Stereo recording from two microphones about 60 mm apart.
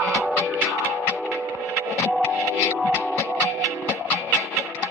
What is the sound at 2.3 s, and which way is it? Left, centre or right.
Music, centre.